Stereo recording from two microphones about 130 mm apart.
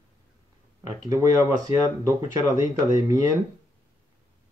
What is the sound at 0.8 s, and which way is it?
Speech, 25° right (ahead or behind).